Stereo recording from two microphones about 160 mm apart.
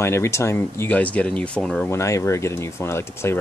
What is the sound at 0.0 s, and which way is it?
Speech, 15° left (ahead or behind).